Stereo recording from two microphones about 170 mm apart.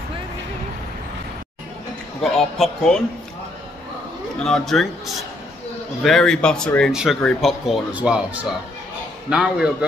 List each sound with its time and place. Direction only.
2.3 s speech: centre (ahead or behind)
4.4 s speech: 5° left (ahead or behind)